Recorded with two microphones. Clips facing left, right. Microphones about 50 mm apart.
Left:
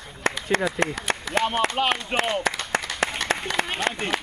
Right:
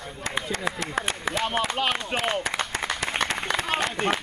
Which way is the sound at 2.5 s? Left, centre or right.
Left.